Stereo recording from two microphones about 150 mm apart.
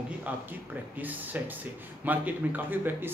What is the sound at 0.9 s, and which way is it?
Speech, 10° right (ahead or behind).